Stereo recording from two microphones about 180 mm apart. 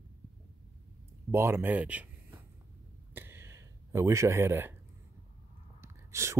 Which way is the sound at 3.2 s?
15° right (ahead or behind).